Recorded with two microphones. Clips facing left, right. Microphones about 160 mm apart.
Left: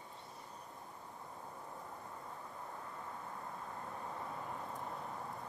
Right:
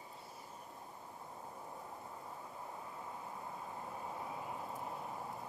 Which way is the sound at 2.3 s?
15° right (ahead or behind).